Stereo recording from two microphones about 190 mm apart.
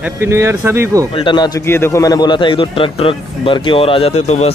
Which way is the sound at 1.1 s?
25° left (ahead or behind).